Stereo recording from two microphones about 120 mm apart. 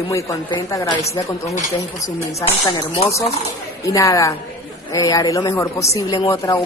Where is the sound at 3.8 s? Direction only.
25° left (ahead or behind).